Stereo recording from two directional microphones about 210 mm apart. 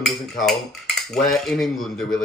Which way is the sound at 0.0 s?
Centre (ahead or behind).